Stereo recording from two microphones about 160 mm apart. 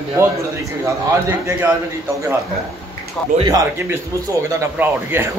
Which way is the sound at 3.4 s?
20° right (ahead or behind).